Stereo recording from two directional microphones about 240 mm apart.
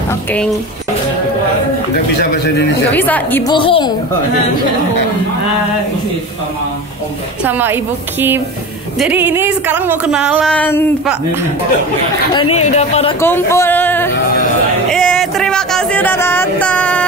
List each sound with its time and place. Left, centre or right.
2.9 s speech: centre
3.5 s speech: left
7.4 s a woman's voice: centre
12.4 s speech: left
13.2 s speech: centre
14.9 s a sound: centre